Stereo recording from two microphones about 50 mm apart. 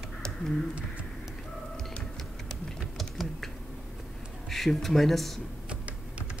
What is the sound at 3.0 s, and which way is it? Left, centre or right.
Typing, centre.